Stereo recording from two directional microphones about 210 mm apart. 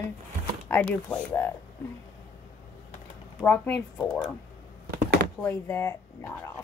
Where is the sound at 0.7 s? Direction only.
5° left (ahead or behind).